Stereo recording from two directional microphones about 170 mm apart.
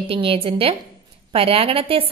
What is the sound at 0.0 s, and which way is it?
A woman's voice, 30° right (ahead or behind).